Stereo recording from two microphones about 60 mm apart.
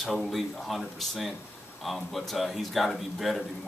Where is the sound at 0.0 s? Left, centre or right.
Centre.